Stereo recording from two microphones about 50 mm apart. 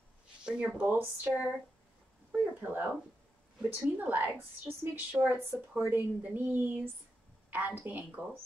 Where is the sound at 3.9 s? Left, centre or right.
Right.